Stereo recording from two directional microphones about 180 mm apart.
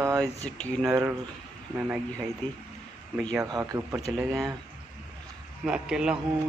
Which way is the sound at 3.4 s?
20° right (ahead or behind).